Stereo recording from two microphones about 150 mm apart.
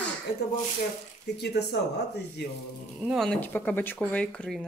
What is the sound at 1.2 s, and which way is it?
Speech, 90° left.